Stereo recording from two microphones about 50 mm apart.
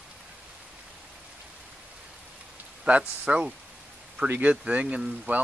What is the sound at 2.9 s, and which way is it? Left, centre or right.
Speech, right.